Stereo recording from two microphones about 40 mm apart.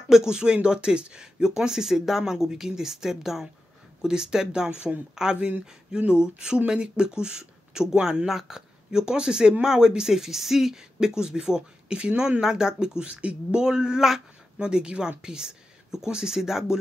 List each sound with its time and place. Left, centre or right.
0.1 s speech: centre
13.6 s speech: centre